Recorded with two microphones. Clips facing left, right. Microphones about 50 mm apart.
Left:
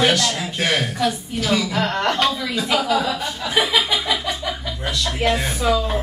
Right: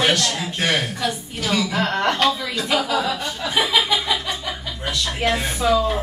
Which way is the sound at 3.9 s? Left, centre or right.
Centre.